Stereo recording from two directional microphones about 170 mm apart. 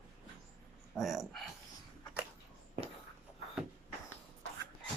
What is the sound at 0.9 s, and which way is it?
Speech, centre (ahead or behind).